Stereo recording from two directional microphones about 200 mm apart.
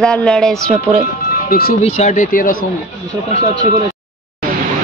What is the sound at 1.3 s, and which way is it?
Speech, 50° left (ahead or behind).